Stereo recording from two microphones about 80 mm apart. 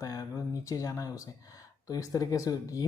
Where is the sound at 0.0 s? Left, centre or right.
Left.